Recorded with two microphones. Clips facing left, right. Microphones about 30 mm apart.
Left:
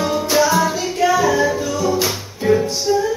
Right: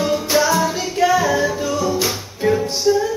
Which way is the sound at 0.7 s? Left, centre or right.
Centre.